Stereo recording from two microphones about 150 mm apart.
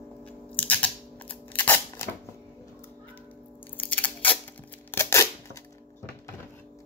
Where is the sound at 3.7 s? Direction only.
10° left (ahead or behind).